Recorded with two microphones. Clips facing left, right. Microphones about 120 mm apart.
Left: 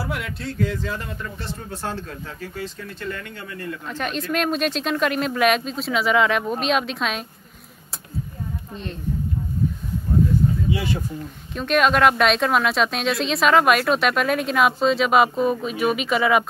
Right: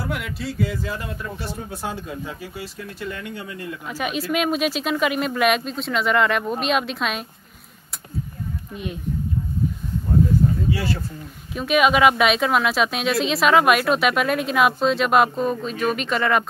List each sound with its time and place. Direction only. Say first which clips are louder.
0.0 s speech: right 1 dB; centre (ahead or behind)
10.7 s speech: even; 15° left (ahead or behind)
11.5 s speech: right 1 dB; 5° right (ahead or behind)